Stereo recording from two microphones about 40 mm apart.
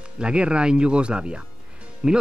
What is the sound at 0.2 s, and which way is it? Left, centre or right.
Speech, right.